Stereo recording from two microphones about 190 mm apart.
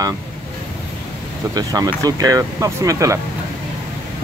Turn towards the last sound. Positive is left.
turn(degrees=-15)  # may be behind; listen again after turning